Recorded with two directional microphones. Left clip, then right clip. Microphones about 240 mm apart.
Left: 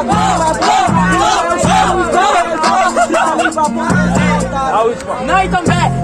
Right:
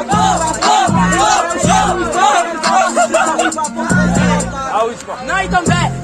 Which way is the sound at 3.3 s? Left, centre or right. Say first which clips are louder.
Left 3 dB; centre.